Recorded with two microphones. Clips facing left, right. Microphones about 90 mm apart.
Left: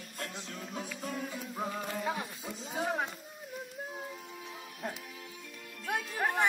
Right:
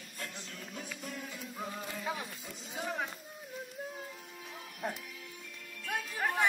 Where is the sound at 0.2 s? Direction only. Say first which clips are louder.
Left 3 dB; 65° left (ahead or behind).